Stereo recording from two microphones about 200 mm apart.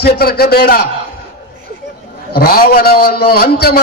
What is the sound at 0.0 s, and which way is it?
Speech, 50° left (ahead or behind).